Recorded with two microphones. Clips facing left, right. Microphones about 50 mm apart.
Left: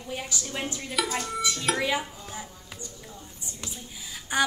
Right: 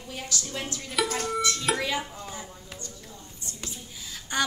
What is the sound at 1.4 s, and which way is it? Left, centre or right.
Music, centre.